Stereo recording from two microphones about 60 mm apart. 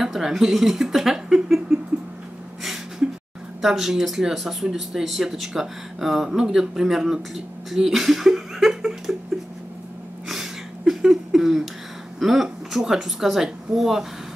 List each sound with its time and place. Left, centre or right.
0.0 s speech: centre
3.6 s speech: centre
10.2 s a sound: centre
12.2 s speech: centre